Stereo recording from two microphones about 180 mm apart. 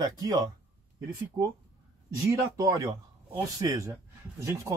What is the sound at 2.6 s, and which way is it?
Speech, 20° right (ahead or behind).